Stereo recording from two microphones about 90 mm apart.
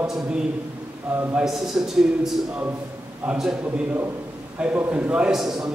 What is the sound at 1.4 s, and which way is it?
A man's voice, 5° right (ahead or behind).